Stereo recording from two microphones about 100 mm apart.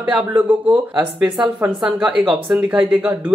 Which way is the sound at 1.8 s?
10° right (ahead or behind).